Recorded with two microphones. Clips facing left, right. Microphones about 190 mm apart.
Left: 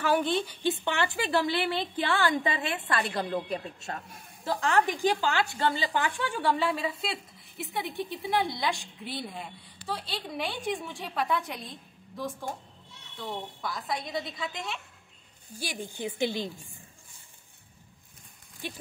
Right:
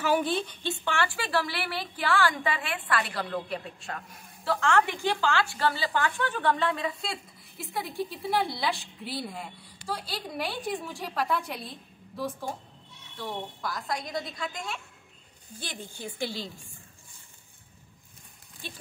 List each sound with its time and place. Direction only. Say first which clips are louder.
0.0 s a woman's voice: even; 5° right (ahead or behind)
0.5 s a woman's voice: left 3 dB; 15° left (ahead or behind)
15.9 s a woman's voice: left 5 dB; 20° left (ahead or behind)
18.6 s a woman's voice: left 5 dB; 15° left (ahead or behind)